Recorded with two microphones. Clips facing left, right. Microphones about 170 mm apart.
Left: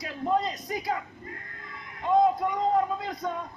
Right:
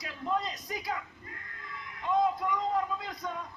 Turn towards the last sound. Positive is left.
turn(degrees=40)  # may be behind; listen again after turning